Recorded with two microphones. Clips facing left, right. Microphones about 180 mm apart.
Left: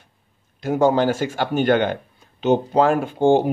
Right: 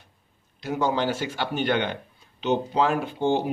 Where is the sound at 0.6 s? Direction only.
50° left (ahead or behind).